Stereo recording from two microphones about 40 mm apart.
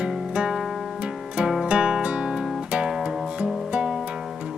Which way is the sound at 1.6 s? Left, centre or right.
Right.